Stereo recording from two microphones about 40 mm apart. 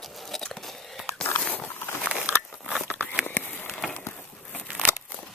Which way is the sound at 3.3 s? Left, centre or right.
Left.